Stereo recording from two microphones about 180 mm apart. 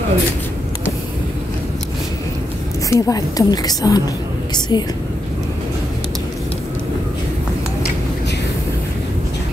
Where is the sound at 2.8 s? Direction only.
20° left (ahead or behind).